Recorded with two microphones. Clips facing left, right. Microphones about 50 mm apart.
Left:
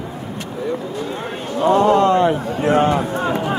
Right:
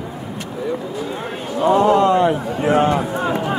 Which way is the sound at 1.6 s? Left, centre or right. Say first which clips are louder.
Even; left.